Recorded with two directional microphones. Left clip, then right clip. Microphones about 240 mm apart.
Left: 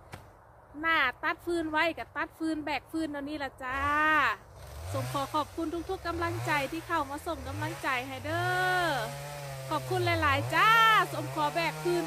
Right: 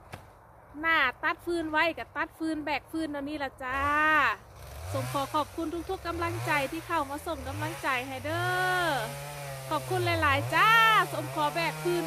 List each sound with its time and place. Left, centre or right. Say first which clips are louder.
0.8 s speech: right 2 dB; centre
4.8 s speech: right 2 dB; right
5.1 s speech: right 1 dB; centre
9.1 s chainsaw: right 1 dB; right
9.9 s speech: right 1 dB; centre
11.7 s speech: even; right